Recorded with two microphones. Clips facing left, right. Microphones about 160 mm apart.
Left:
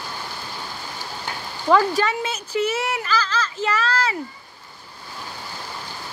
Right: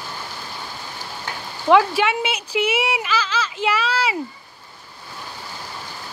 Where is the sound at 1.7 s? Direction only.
10° right (ahead or behind).